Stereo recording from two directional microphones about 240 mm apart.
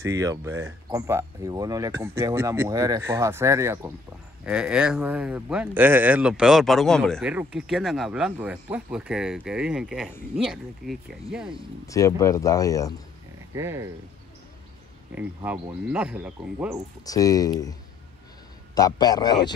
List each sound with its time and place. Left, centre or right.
0.0 s speech: centre
11.9 s speech: centre
13.6 s speech: centre
15.1 s speech: centre
17.0 s speech: centre
18.8 s speech: centre